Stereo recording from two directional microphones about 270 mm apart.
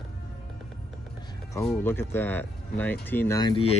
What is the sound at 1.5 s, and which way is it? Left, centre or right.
Speech, centre.